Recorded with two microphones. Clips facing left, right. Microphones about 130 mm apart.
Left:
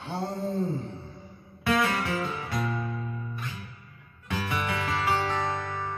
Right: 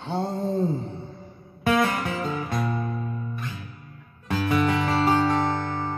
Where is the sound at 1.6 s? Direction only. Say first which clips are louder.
Right 4 dB; 40° right (ahead or behind).